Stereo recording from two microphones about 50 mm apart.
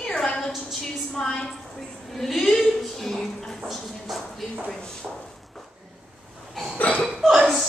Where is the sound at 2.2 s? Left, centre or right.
Centre.